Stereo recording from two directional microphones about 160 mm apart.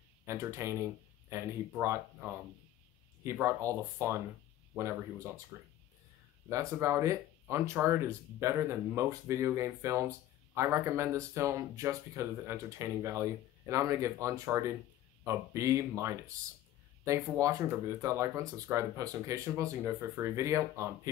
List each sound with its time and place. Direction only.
0.2 s speech: 20° right (ahead or behind)